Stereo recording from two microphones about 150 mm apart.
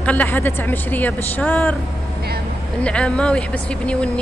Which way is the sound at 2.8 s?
5° left (ahead or behind).